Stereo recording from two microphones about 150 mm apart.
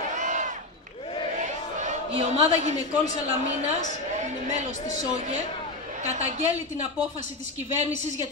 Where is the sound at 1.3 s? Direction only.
55° right (ahead or behind).